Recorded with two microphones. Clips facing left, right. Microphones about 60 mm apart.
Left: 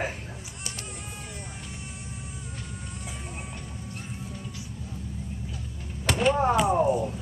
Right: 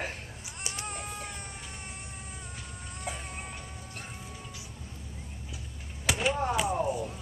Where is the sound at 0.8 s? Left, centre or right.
Right.